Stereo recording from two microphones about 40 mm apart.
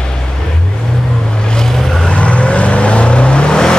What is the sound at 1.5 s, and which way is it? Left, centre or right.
Vehicle, centre.